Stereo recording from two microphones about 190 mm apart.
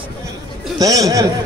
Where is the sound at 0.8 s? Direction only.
15° right (ahead or behind).